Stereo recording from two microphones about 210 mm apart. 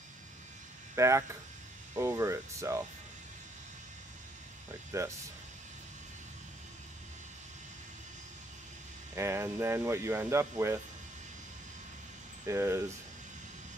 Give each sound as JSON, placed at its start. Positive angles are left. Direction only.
{"t": 0.9, "sound": "speech", "side_deg": -15}
{"t": 4.9, "sound": "speech", "side_deg": -15}
{"t": 9.1, "sound": "speech", "side_deg": -15}
{"t": 12.4, "sound": "speech", "side_deg": -15}